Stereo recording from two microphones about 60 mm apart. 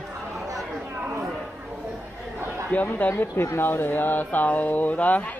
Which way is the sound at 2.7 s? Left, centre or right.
Left.